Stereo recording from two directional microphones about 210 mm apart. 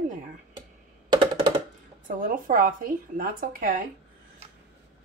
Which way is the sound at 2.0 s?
40° right (ahead or behind).